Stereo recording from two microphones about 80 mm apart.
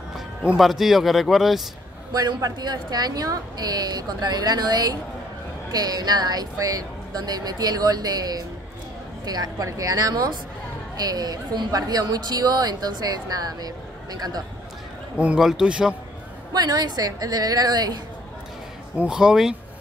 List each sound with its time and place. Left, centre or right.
0.6 s speech: centre
2.1 s a woman's voice: right
15.3 s a man's voice: centre
16.5 s a woman's voice: right
18.9 s a man's voice: centre